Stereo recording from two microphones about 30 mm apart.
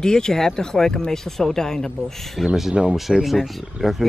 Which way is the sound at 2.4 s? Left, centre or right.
Centre.